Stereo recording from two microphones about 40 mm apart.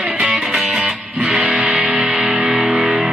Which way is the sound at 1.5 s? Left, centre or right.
Right.